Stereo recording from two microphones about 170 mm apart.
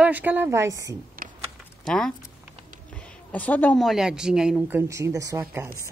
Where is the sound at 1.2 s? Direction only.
55° right (ahead or behind).